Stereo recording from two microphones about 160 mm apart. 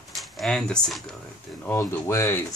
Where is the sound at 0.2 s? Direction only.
Centre (ahead or behind).